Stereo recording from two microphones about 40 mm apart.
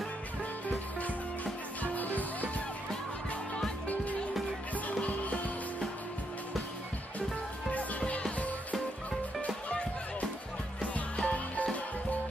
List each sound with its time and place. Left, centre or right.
1.0 s music: left
4.8 s music: left
8.1 s music: left
11.2 s music: left